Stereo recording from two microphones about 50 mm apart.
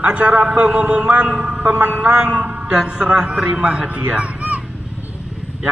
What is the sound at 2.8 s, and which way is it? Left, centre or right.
A man's voice, centre.